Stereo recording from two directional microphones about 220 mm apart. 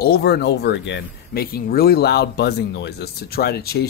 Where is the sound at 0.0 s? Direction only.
45° left (ahead or behind).